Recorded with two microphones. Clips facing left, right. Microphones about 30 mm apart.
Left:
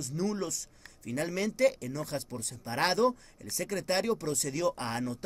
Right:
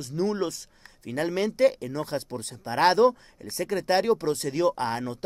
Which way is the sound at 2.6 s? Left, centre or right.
Right.